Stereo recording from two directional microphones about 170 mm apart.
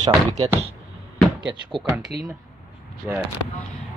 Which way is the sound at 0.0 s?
20° right (ahead or behind).